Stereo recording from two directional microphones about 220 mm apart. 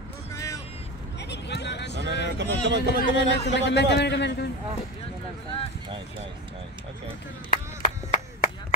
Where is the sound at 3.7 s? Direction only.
50° left (ahead or behind).